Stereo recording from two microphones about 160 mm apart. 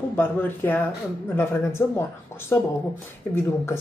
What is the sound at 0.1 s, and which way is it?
A man's voice, 10° left (ahead or behind).